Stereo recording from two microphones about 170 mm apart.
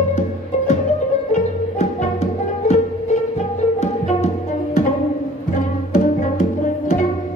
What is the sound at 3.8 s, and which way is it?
Music, 40° left (ahead or behind).